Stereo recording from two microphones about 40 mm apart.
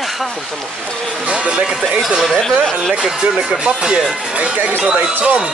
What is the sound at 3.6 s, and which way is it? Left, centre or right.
Speech, right.